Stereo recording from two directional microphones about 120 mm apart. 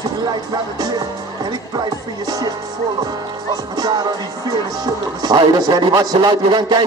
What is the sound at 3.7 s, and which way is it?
Speech, 35° right (ahead or behind).